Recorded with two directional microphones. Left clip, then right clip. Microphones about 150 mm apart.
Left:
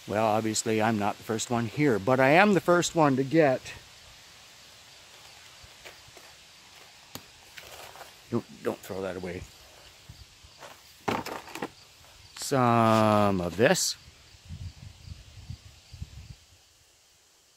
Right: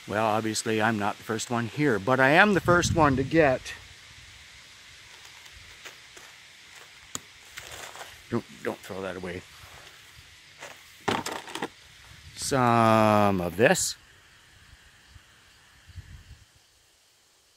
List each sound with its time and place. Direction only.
0.1 s speech: 5° left (ahead or behind)
7.1 s chop: 50° right (ahead or behind)
8.3 s speech: 5° right (ahead or behind)
8.6 s speech: 15° left (ahead or behind)
10.6 s a sound: 35° right (ahead or behind)
12.4 s speech: centre (ahead or behind)